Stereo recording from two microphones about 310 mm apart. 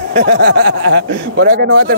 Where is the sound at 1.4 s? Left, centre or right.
Right.